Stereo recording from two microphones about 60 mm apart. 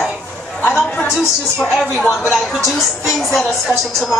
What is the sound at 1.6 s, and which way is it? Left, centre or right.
Speech, centre.